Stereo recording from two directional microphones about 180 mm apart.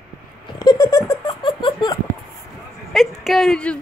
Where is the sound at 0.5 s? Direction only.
25° left (ahead or behind).